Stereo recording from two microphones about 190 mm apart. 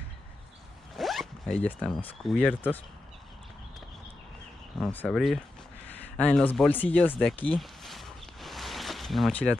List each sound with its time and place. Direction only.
0.9 s speech: centre (ahead or behind)
4.7 s speech: 5° left (ahead or behind)
7.4 s a sound: centre (ahead or behind)